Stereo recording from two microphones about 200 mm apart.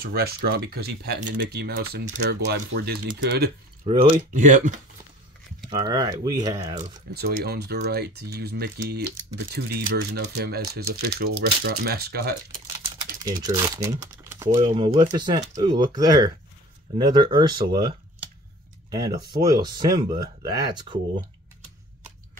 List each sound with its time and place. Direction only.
0.0 s speech: 50° right (ahead or behind)
3.8 s speech: 30° right (ahead or behind)
5.7 s speech: 20° right (ahead or behind)
7.2 s speech: 50° right (ahead or behind)
13.2 s speech: 20° right (ahead or behind)